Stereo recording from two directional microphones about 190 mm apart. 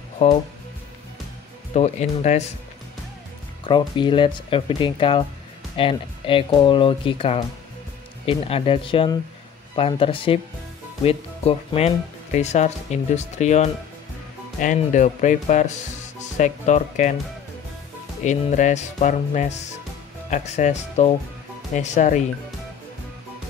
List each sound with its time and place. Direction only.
0.2 s speech: 30° left (ahead or behind)
1.7 s speech: 35° left (ahead or behind)
3.6 s speech: 25° left (ahead or behind); by 17.1 s 40° left (ahead or behind)
18.2 s speech: 40° left (ahead or behind)